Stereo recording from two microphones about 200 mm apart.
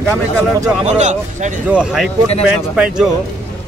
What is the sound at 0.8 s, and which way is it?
Speech, 35° right (ahead or behind).